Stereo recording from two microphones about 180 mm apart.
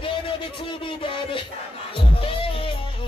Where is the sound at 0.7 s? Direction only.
30° left (ahead or behind).